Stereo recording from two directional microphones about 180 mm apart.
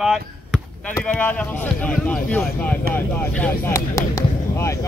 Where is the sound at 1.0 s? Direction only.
10° left (ahead or behind).